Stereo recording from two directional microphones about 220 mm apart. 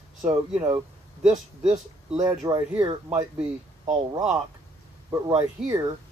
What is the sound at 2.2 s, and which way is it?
Speech, 15° right (ahead or behind).